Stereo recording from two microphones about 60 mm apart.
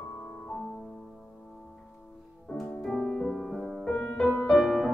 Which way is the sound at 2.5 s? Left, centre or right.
Centre.